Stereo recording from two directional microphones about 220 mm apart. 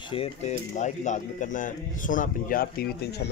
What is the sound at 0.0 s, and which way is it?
Speech, 25° left (ahead or behind).